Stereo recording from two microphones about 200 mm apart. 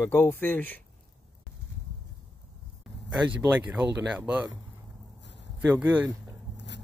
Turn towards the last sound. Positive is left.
turn(degrees=-10)  # may be behind; listen again after turning